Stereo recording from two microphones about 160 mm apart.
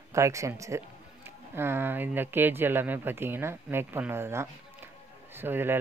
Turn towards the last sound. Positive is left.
turn(degrees=-15)  # may be behind; listen again after turning